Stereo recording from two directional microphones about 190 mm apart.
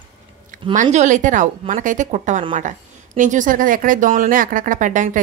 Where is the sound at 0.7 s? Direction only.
40° right (ahead or behind).